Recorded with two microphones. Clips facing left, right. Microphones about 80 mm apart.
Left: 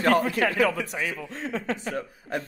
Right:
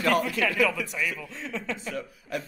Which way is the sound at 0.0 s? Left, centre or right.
Left.